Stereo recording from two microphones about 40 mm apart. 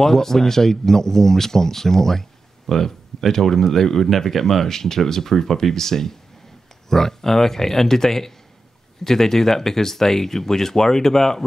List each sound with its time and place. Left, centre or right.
0.0 s speech: centre